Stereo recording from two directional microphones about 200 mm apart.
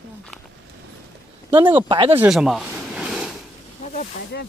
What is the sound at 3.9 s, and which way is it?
Speech, 55° left (ahead or behind).